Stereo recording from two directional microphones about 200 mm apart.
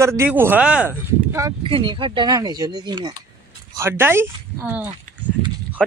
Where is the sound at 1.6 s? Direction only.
25° right (ahead or behind); by 4.9 s 10° right (ahead or behind).